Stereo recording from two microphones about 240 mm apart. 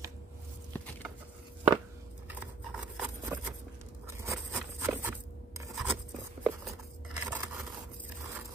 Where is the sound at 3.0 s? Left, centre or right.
Centre.